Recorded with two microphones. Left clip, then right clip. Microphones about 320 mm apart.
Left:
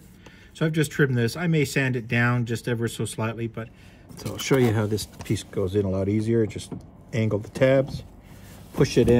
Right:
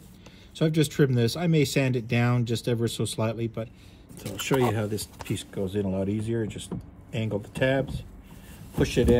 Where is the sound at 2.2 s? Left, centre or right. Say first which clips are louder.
Left 2 dB; centre.